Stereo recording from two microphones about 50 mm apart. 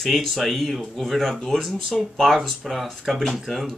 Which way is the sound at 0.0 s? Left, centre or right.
Centre.